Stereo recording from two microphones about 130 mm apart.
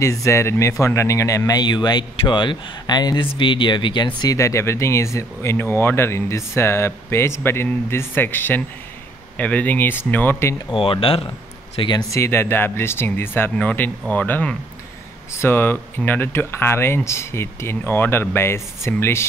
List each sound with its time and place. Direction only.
0.0 s speech: 25° left (ahead or behind)
10.7 s speech: 45° left (ahead or behind)
12.1 s speech: 20° left (ahead or behind)